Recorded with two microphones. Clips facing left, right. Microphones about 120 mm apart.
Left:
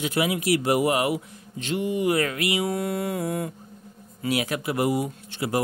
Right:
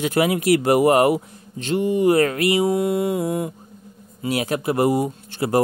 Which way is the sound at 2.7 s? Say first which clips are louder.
Right 7 dB; 20° right (ahead or behind).